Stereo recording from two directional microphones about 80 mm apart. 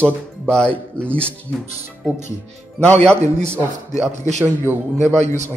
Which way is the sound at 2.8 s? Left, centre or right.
Centre.